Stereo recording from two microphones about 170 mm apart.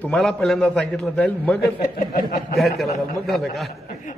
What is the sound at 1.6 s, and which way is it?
Speech, 60° left (ahead or behind).